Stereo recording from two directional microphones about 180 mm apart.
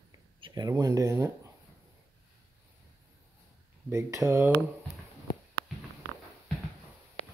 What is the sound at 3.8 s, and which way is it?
Speech, 15° right (ahead or behind).